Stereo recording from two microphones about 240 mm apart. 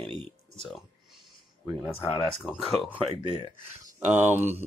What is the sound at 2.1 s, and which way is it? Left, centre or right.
Speech, centre.